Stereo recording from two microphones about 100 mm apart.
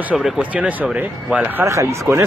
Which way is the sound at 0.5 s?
10° right (ahead or behind).